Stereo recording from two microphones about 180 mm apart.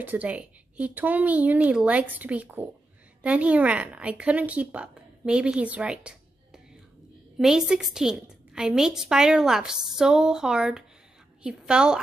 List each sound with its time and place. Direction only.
0.0 s a woman's voice: 10° right (ahead or behind)